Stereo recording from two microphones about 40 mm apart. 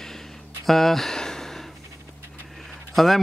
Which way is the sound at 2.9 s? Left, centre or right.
Centre.